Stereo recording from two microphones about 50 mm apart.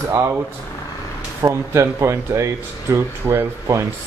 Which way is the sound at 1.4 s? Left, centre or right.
Right.